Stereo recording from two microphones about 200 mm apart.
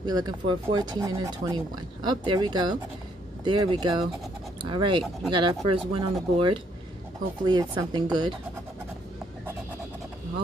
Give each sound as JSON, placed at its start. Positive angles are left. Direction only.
{"t": 0.0, "sound": "speech", "side_deg": -20}